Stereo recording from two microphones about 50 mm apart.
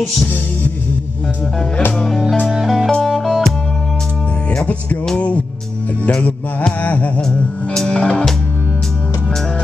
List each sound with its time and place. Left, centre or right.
2.0 s music: centre
2.9 s music: centre
5.1 s music: left
6.8 s music: left
7.7 s music: centre